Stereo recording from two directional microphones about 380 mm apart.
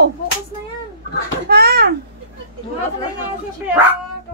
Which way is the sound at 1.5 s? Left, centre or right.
Right.